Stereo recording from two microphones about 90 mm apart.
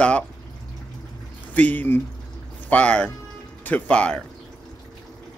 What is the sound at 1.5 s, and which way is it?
Speech, 20° left (ahead or behind).